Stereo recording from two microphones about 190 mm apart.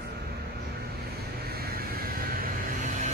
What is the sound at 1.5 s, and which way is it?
Vehicle, 55° right (ahead or behind).